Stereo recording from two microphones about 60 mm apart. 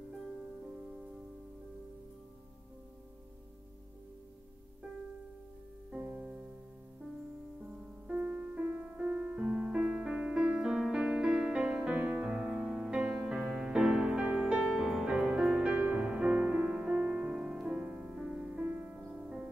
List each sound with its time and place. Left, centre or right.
6.1 s music: centre
8.1 s music: centre